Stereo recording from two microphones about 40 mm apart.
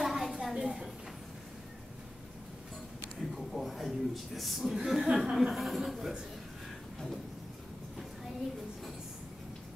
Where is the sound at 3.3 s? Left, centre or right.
Centre.